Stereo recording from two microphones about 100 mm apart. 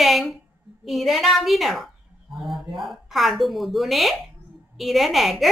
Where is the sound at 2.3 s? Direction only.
Centre (ahead or behind).